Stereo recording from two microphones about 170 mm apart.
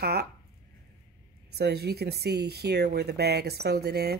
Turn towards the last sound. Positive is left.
turn(degrees=-70)  # may be behind; listen again after turning